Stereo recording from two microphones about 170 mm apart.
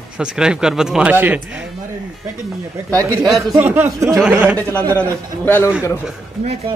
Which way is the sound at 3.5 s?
10° right (ahead or behind).